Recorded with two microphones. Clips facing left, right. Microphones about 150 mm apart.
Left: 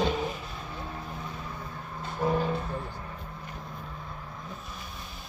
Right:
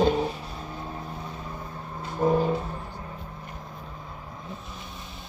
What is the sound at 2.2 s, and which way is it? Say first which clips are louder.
Vehicle: right 5 dB; 20° right (ahead or behind).